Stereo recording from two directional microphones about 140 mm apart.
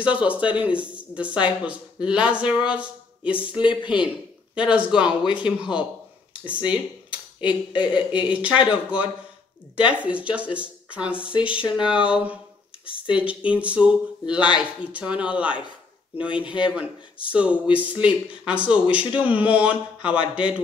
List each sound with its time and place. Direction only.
0.0 s speech: 10° right (ahead or behind)
3.6 s speech: 35° left (ahead or behind)
4.6 s speech: 10° right (ahead or behind)
5.2 s speech: 35° left (ahead or behind)
5.6 s speech: 5° right (ahead or behind)
7.3 s speech: 35° left (ahead or behind)
8.3 s speech: 10° right (ahead or behind)
11.2 s speech: 40° left (ahead or behind)
11.7 s speech: 5° right (ahead or behind)
13.1 s speech: 10° right (ahead or behind)
16.6 s speech: 10° right (ahead or behind)
20.2 s speech: 35° left (ahead or behind)